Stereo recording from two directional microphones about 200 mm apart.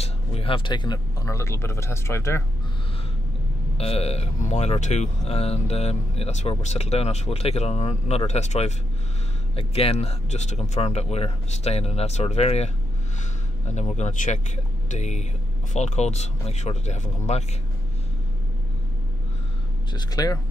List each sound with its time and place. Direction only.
0.0 s speech: 30° left (ahead or behind); by 2.4 s 15° left (ahead or behind)
3.7 s speech: 30° left (ahead or behind)
19.9 s speech: 20° left (ahead or behind)